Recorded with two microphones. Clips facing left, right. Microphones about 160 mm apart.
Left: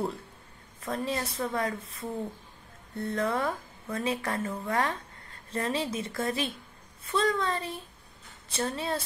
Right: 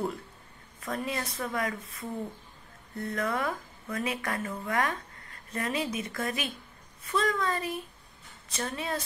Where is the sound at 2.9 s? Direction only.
30° left (ahead or behind).